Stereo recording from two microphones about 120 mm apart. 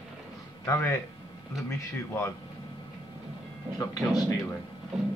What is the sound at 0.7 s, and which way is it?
Speech, 20° left (ahead or behind).